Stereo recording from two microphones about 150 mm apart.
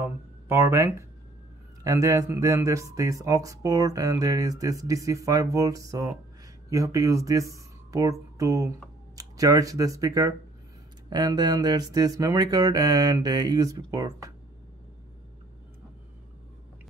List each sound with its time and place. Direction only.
0.0 s speech: 15° right (ahead or behind)